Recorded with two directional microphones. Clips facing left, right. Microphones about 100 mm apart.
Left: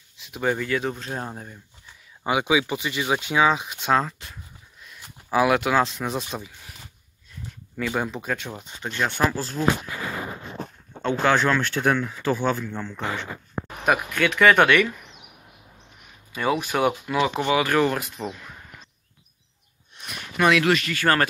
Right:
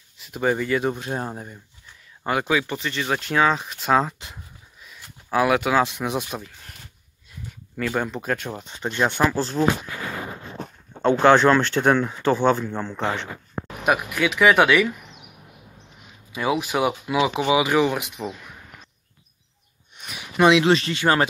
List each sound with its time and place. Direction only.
0.2 s speech: centre (ahead or behind)
2.2 s speech: 5° left (ahead or behind)
4.0 s speech: 20° right (ahead or behind)
4.8 s a sound: centre (ahead or behind)
5.9 s speech: 10° right (ahead or behind)
8.8 s speech: 25° right (ahead or behind)
11.0 s speech: 30° right (ahead or behind)
13.8 s speech: 10° right (ahead or behind)
16.3 s speech: 10° right (ahead or behind)
20.0 s a sound: centre (ahead or behind)
20.3 s speech: 20° right (ahead or behind)